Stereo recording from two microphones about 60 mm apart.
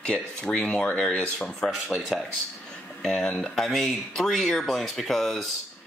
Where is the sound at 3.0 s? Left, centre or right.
Centre.